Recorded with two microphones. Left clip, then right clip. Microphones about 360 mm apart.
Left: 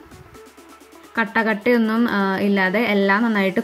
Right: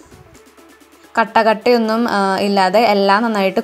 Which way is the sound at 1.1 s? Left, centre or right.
Right.